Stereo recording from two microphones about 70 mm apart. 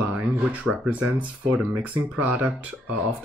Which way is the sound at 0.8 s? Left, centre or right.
Right.